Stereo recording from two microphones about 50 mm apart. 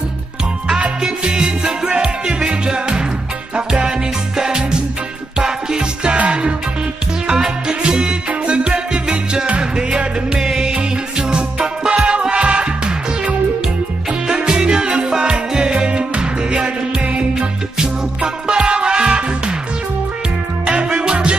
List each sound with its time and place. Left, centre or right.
0.7 s music: right
7.2 s music: centre
20.7 s music: right